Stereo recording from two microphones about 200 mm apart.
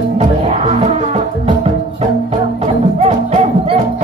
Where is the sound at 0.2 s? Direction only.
30° right (ahead or behind).